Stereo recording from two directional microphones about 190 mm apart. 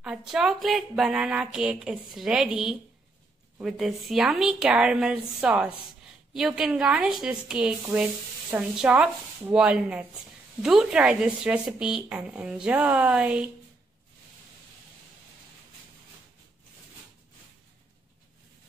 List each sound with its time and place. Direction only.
0.0 s a woman's voice: 5° right (ahead or behind)